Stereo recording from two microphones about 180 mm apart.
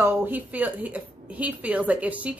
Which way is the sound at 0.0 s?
10° right (ahead or behind).